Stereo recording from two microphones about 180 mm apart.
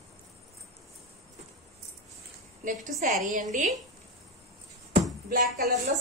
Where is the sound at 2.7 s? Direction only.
45° right (ahead or behind).